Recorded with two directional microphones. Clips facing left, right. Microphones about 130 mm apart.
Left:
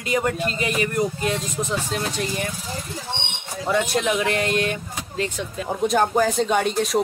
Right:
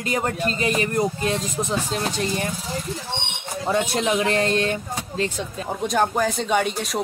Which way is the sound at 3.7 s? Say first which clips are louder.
Even; 30° right (ahead or behind).